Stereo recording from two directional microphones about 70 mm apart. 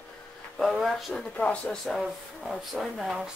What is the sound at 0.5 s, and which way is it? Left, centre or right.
Speech, centre.